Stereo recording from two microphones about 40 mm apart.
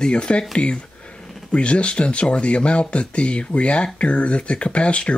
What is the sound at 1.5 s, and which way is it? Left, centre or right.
Speech, left.